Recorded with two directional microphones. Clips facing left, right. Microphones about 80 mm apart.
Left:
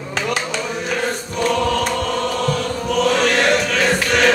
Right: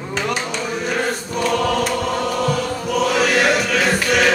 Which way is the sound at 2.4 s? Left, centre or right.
Centre.